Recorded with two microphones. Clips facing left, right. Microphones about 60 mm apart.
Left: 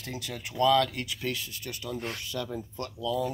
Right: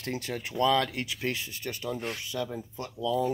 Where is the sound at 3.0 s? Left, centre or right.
Right.